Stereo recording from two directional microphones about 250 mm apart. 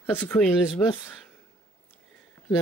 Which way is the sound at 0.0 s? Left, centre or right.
Centre.